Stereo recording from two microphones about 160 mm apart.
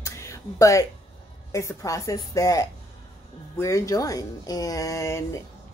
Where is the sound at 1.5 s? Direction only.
20° left (ahead or behind).